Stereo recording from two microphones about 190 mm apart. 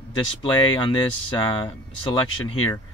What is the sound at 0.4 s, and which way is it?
Speech, 25° left (ahead or behind).